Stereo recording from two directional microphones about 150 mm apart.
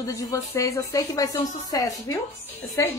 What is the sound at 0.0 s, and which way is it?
A woman's voice, 25° left (ahead or behind).